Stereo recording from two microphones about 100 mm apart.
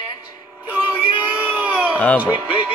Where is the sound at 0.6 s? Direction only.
20° right (ahead or behind).